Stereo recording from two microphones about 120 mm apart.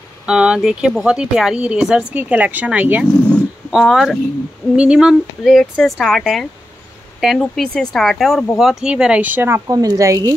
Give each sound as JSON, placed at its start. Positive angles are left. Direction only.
{"t": 0.3, "sound": "speech", "side_deg": -10}
{"t": 9.7, "sound": "speech", "side_deg": -30}